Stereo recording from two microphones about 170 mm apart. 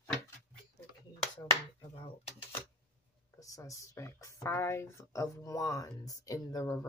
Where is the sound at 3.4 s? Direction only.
20° left (ahead or behind).